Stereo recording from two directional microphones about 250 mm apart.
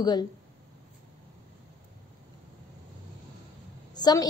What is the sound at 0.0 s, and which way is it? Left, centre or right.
Speech, centre.